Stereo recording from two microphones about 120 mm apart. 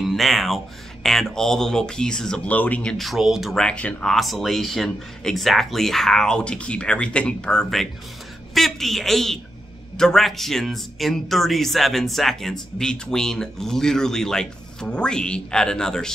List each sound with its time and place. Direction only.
0.0 s speech: centre (ahead or behind)